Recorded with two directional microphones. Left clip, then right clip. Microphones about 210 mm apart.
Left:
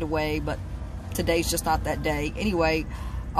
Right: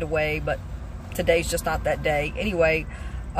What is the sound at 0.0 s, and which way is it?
Speech, 15° left (ahead or behind).